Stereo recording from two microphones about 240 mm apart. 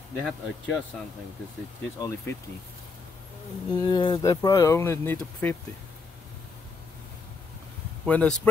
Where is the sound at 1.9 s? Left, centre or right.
Centre.